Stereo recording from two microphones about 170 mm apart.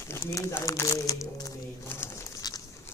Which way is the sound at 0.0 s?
15° left (ahead or behind).